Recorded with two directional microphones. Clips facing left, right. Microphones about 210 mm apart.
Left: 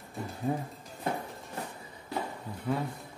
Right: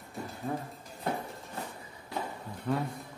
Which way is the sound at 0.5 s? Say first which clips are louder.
Left 4 dB; 20° left (ahead or behind).